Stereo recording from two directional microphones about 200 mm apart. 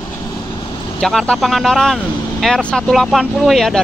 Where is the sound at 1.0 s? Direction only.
5° left (ahead or behind).